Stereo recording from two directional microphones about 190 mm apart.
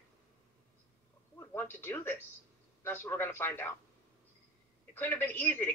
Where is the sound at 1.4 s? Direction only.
10° left (ahead or behind).